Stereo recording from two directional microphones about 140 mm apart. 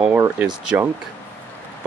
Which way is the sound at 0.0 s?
15° right (ahead or behind).